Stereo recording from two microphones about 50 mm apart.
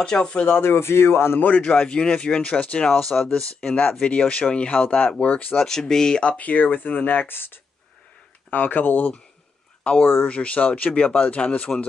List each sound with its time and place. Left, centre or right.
0.0 s speech: centre
0.5 s speech: left
1.6 s speech: centre
2.9 s speech: centre; by 5.6 s left
5.6 s speech: centre; by 9.2 s left
10.2 s speech: left